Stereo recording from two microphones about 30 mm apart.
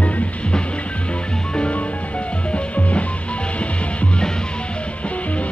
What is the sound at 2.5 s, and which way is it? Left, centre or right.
Music, left.